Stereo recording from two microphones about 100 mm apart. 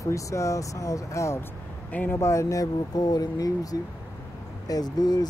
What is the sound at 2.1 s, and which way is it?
Speech, 30° left (ahead or behind).